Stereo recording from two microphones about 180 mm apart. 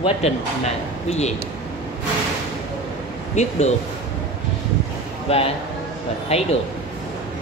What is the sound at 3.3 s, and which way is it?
Speech, 40° left (ahead or behind).